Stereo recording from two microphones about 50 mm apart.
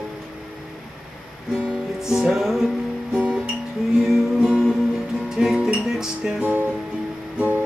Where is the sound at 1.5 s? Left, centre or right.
Centre.